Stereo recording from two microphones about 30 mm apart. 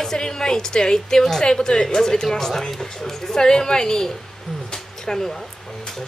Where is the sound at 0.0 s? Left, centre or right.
Centre.